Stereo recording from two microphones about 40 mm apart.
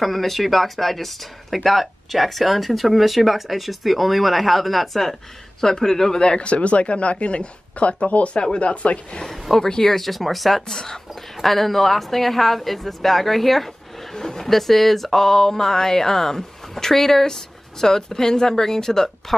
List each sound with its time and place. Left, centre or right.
0.0 s speech: centre
6.2 s speech: left
9.2 s speech: centre
9.9 s speech: centre